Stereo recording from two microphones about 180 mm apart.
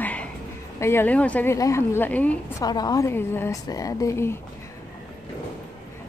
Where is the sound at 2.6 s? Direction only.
20° left (ahead or behind).